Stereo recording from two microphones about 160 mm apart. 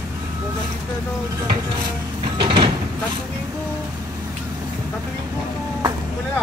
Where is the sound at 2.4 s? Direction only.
30° right (ahead or behind).